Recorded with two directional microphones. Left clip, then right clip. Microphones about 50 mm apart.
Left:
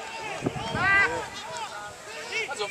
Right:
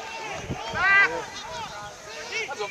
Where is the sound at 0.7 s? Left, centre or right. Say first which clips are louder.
Right 3 dB; right.